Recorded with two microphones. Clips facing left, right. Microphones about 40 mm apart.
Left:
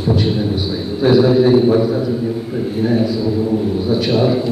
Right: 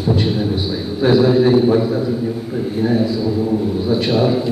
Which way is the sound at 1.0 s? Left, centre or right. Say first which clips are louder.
Left 1 dB; centre.